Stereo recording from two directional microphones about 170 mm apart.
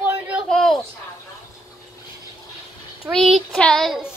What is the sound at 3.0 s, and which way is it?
Child singing, centre (ahead or behind).